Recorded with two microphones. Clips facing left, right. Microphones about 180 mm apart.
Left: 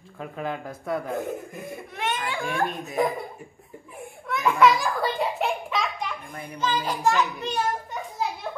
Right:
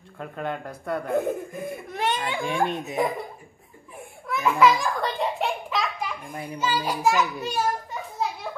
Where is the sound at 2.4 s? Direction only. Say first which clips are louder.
Right 1 dB; 15° right (ahead or behind).